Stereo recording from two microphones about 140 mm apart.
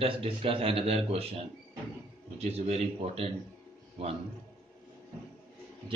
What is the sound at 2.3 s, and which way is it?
Speech, 50° right (ahead or behind).